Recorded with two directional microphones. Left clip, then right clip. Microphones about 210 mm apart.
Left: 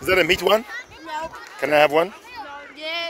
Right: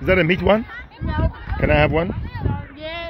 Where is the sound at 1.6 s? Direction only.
30° left (ahead or behind).